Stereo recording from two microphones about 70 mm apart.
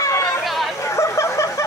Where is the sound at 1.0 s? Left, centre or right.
Left.